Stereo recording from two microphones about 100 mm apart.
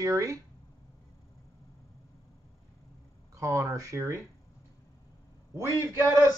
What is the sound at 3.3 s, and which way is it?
Speech, 30° right (ahead or behind).